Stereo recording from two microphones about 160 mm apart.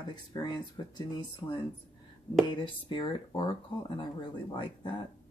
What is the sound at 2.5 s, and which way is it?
Speech, 30° left (ahead or behind).